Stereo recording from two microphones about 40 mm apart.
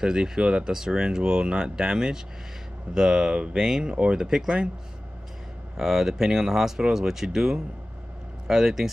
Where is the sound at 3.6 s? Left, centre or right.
Centre.